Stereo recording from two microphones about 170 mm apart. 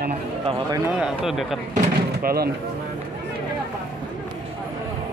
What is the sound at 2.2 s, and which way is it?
Speech, 65° right (ahead or behind).